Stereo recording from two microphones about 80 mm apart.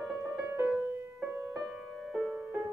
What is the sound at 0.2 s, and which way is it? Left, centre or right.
Music, right.